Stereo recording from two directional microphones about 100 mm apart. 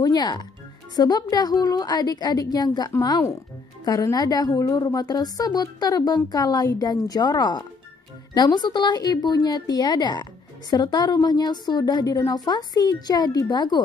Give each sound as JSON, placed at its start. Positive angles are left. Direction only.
{"t": 0.0, "sound": "a woman's voice", "side_deg": 45}